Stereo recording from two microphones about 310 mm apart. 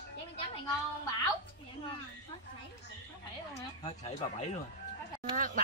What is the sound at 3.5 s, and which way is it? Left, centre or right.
Speech, centre.